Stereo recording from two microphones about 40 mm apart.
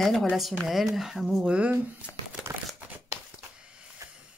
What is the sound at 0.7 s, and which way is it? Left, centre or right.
Speech, centre.